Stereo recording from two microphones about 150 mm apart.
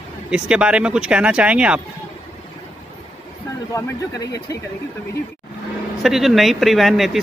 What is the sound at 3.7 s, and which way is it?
Speech, 25° left (ahead or behind).